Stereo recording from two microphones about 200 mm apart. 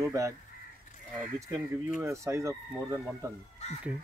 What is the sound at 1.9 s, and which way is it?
Speech, 10° right (ahead or behind).